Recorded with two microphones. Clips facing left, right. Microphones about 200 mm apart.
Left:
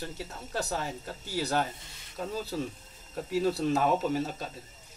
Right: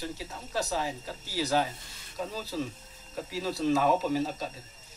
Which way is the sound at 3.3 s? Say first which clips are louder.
Left 1 dB; 55° left (ahead or behind).